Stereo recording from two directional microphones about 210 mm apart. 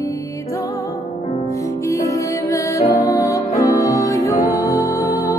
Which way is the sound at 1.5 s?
15° left (ahead or behind).